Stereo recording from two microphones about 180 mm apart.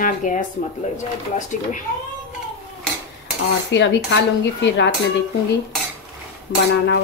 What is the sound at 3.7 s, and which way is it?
Speech, 75° left (ahead or behind).